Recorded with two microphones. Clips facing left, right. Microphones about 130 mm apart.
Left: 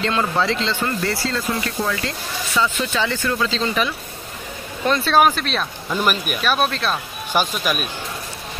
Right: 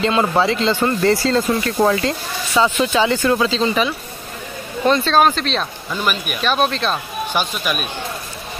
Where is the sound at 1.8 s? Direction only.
45° right (ahead or behind).